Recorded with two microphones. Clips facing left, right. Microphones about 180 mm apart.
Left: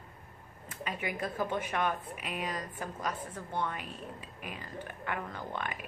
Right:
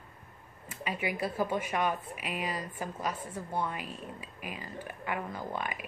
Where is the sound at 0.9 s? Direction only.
10° right (ahead or behind).